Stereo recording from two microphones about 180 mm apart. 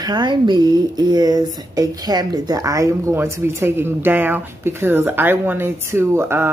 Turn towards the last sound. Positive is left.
turn(degrees=-15)  # may be behind; listen again after turning